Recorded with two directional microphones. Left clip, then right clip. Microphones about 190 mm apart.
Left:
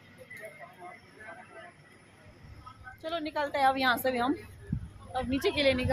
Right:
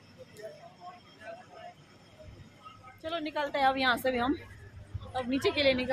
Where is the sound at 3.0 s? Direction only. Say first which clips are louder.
Left 1 dB; 10° left (ahead or behind).